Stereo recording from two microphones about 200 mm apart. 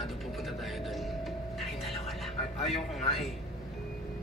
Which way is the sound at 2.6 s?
30° left (ahead or behind).